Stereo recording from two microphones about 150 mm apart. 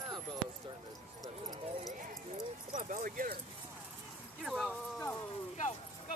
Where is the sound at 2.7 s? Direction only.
55° right (ahead or behind); by 3.4 s 75° right (ahead or behind).